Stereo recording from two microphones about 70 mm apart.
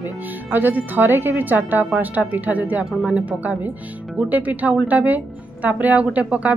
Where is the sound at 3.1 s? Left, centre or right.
Right.